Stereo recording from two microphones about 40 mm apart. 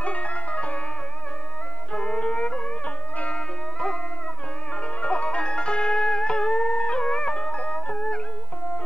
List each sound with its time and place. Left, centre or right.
0.0 s music: left
2.0 s music: left
3.3 s music: centre
5.0 s music: left